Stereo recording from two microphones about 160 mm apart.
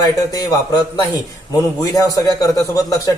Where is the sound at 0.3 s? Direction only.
25° left (ahead or behind).